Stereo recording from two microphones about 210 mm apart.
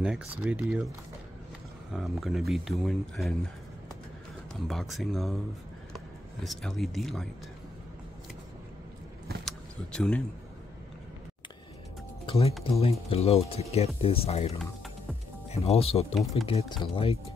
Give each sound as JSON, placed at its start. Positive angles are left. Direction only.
{"t": 0.0, "sound": "speech", "side_deg": -5}
{"t": 2.0, "sound": "speech", "side_deg": 0}
{"t": 4.6, "sound": "speech", "side_deg": 0}
{"t": 9.4, "sound": "vehicle", "side_deg": 0}
{"t": 12.3, "sound": "speech", "side_deg": 30}